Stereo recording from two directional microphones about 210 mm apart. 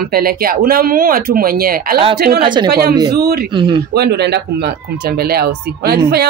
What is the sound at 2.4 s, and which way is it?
Speech, 20° right (ahead or behind).